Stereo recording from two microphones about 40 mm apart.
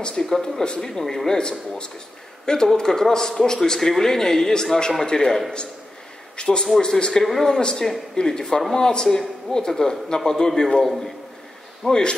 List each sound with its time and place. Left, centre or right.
0.0 s a man's voice: centre
11.9 s a man's voice: left